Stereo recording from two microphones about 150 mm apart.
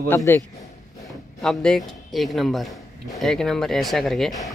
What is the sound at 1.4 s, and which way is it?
A man's voice, 5° left (ahead or behind).